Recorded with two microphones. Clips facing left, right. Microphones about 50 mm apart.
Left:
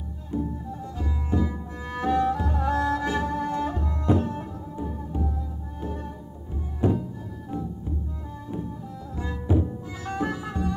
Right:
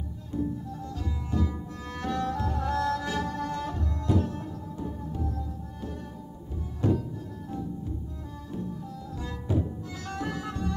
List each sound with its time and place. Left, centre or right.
0.3 s music: left
9.1 s music: left